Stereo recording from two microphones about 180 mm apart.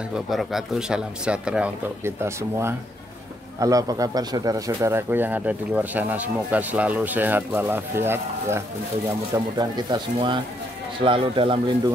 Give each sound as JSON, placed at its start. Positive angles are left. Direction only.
{"t": 0.1, "sound": "a man's voice", "side_deg": 0}